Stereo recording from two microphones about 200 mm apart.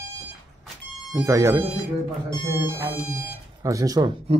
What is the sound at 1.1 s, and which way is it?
Speech, 15° right (ahead or behind).